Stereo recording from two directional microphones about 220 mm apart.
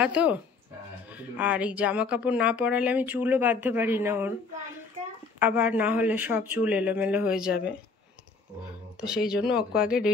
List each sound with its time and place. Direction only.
0.0 s speech: 5° right (ahead or behind)
1.4 s speech: 5° right (ahead or behind)
5.4 s speech: 5° right (ahead or behind)
9.0 s speech: 5° right (ahead or behind)